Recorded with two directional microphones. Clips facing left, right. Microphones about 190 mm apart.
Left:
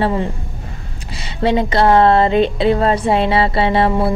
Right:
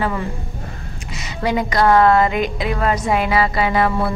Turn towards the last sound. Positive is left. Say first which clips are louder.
# left 3 dB
turn(degrees=30)  # may be behind; listen again after turning